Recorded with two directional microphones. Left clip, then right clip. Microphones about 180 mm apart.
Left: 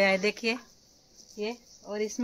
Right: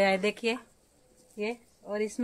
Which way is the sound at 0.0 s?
15° left (ahead or behind).